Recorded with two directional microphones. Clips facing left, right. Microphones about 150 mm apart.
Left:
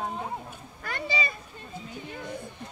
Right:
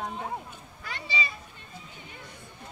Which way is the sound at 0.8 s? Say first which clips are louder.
Left 4 dB; 50° left (ahead or behind).